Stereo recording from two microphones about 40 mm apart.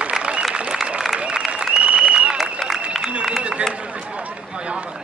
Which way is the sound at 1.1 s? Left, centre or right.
Right.